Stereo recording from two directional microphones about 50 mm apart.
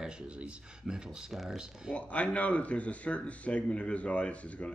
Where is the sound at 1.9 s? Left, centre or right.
Left.